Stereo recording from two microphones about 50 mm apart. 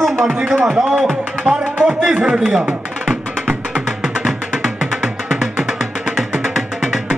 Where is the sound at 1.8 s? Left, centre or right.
Centre.